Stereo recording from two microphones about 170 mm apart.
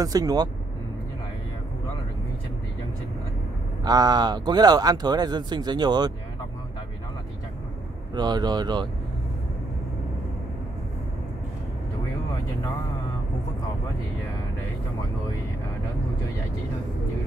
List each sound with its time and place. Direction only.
0.0 s speech: 20° right (ahead or behind)
3.8 s speech: 25° right (ahead or behind)
8.1 s speech: 25° right (ahead or behind)